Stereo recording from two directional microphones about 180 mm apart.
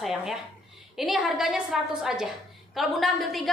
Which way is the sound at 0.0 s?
Centre (ahead or behind).